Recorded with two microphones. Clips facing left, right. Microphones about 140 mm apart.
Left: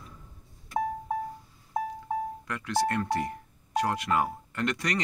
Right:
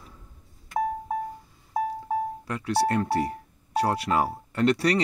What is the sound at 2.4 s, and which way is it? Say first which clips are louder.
Speech: right 3 dB; 30° right (ahead or behind).